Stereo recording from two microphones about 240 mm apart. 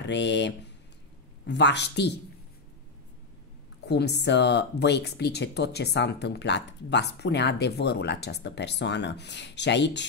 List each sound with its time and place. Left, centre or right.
0.0 s speech: left
3.8 s speech: left